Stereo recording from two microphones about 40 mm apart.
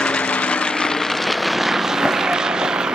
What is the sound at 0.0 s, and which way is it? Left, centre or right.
Vehicle, left.